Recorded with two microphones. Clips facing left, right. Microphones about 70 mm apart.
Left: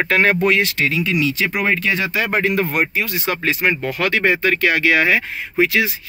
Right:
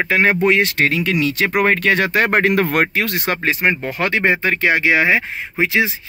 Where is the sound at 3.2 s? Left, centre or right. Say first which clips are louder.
Even; right.